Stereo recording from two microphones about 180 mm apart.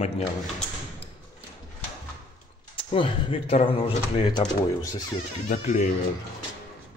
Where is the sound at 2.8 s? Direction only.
30° left (ahead or behind).